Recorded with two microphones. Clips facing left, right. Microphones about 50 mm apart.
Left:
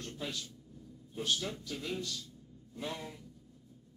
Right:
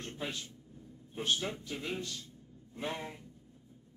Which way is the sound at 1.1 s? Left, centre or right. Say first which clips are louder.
Right 1 dB; right.